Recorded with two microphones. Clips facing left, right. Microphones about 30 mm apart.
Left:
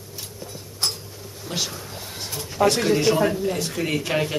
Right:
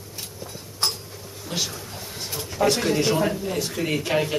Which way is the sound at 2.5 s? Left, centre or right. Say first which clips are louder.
Left 2 dB; centre.